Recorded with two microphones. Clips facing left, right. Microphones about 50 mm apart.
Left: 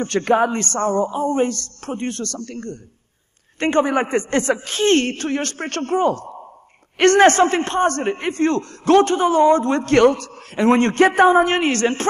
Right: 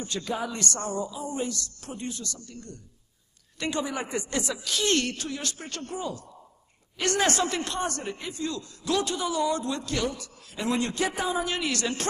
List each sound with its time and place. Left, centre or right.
0.0 s a man's voice: left
3.5 s a man's voice: left